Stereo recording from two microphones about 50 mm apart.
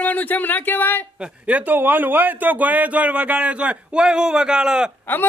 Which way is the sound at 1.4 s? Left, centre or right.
Right.